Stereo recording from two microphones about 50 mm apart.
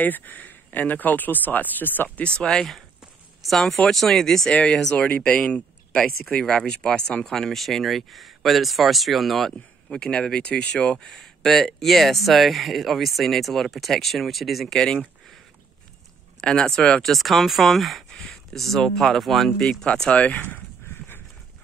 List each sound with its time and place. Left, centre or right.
0.0 s speech: left
2.2 s speech: centre
3.4 s speech: centre
4.9 s speech: left
7.2 s speech: centre
9.8 s speech: centre
11.1 s speech: centre
16.3 s speech: centre
17.1 s speech: centre
19.6 s speech: centre
20.1 s speech: left